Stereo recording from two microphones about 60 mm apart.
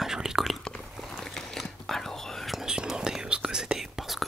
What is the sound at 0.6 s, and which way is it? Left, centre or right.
Whispering, centre.